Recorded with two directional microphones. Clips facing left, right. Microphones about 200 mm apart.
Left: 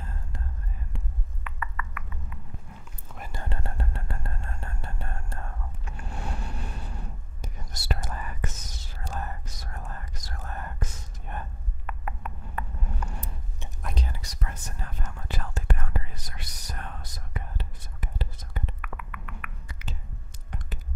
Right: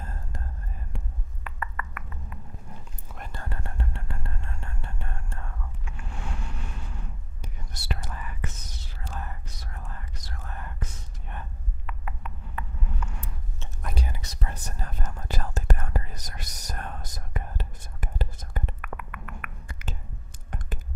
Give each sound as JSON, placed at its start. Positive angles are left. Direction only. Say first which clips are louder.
{"t": 0.9, "sound": "a sound", "louder": "even", "side_deg": -40}
{"t": 3.2, "sound": "whispering", "louder": "left 1 dB", "side_deg": 10}
{"t": 3.4, "sound": "whispering", "louder": "left 2 dB", "side_deg": 30}
{"t": 11.2, "sound": "a sound", "louder": "left 3 dB", "side_deg": 45}
{"t": 13.8, "sound": "whispering", "louder": "right 1 dB", "side_deg": -10}
{"t": 14.2, "sound": "whispering", "louder": "right 2 dB", "side_deg": -30}
{"t": 20.7, "sound": "computer keyboard", "louder": "right 6 dB", "side_deg": -50}